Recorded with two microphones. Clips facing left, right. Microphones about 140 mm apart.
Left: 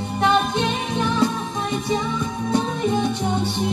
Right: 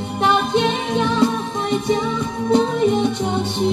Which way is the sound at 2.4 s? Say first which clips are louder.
Right 6 dB; 20° right (ahead or behind).